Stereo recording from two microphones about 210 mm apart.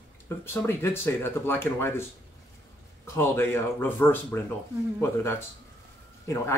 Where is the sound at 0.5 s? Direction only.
10° left (ahead or behind).